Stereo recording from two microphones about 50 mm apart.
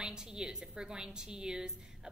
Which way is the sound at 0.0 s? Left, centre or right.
Centre.